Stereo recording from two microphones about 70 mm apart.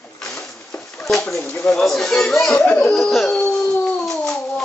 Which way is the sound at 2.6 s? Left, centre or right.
Left.